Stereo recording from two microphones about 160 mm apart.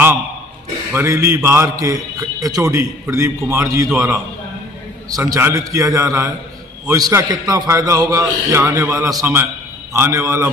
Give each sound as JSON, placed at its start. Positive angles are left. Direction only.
{"t": 0.9, "sound": "a man's voice", "side_deg": -15}
{"t": 5.3, "sound": "a man's voice", "side_deg": -20}